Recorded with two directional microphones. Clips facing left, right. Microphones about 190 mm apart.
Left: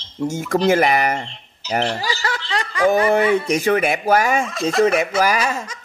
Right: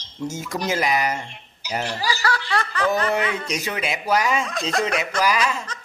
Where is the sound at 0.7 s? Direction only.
60° left (ahead or behind).